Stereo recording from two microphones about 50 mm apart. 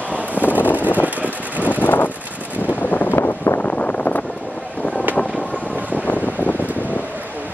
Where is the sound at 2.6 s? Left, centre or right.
Left.